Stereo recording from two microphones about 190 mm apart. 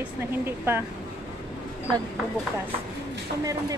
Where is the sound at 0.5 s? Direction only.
10° right (ahead or behind).